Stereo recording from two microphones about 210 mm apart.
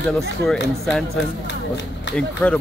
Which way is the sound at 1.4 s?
60° left (ahead or behind).